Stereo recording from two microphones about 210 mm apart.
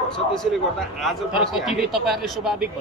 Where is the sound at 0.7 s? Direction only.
Centre (ahead or behind).